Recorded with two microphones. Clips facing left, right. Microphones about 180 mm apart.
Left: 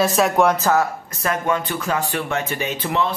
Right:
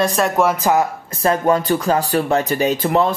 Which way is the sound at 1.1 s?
30° right (ahead or behind).